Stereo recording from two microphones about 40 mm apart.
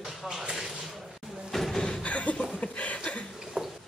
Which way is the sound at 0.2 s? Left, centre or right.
Centre.